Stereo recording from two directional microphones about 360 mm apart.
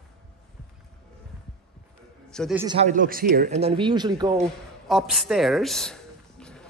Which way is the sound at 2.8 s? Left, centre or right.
Right.